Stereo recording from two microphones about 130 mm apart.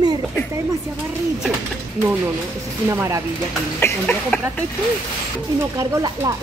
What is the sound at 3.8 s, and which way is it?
Speech, 10° left (ahead or behind).